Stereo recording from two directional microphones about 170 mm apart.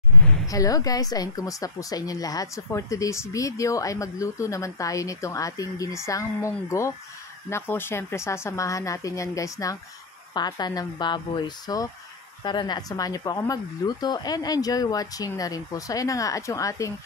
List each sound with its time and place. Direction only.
0.5 s a woman's voice: 20° left (ahead or behind)